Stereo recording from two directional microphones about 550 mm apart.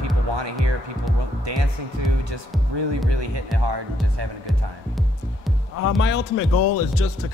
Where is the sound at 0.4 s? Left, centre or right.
Right.